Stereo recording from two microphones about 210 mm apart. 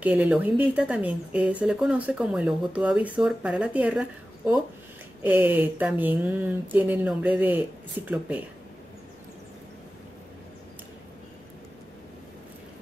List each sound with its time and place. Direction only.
0.0 s speech: 5° right (ahead or behind)